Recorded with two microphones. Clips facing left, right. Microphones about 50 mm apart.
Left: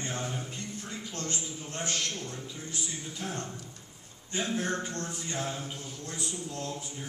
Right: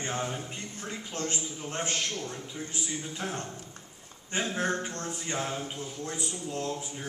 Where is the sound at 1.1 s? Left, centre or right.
Right.